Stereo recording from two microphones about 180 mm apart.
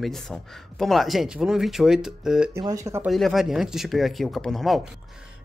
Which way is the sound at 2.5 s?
20° right (ahead or behind).